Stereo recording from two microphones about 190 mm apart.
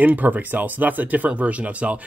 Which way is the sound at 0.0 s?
10° right (ahead or behind).